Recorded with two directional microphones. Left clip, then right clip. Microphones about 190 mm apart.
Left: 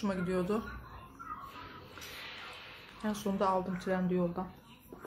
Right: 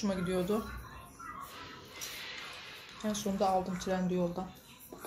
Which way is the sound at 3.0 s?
10° left (ahead or behind).